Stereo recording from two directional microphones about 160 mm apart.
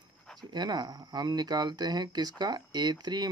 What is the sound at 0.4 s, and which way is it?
Speech, 25° right (ahead or behind).